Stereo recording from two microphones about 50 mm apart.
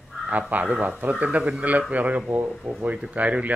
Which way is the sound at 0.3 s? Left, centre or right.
Right.